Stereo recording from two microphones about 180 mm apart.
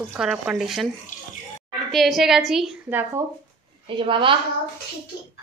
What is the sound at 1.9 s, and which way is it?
Speech, centre (ahead or behind).